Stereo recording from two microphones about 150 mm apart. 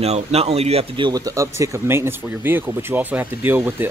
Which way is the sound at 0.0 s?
45° right (ahead or behind).